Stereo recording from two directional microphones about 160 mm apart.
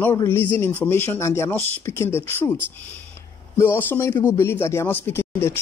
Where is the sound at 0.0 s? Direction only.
15° left (ahead or behind).